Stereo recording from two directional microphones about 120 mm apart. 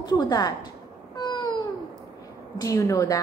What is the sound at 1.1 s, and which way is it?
Babbling, 40° left (ahead or behind).